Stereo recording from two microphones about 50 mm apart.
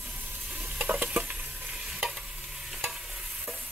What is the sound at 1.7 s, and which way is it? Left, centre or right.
Stir, centre.